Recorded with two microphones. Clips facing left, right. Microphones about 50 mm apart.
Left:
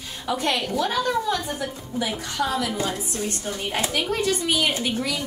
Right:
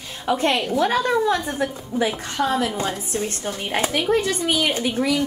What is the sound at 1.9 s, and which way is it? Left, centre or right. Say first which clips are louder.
A woman's voice: right 4 dB; right.